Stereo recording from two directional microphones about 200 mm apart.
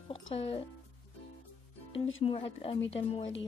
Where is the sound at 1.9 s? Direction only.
75° left (ahead or behind).